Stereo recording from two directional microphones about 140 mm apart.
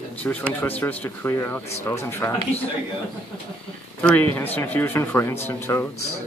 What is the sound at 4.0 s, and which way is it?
Speech, 10° left (ahead or behind).